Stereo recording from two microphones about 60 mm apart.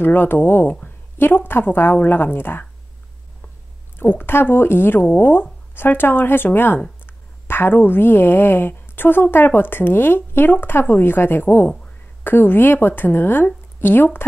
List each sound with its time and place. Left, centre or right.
0.0 s a woman's voice: left
4.0 s a woman's voice: left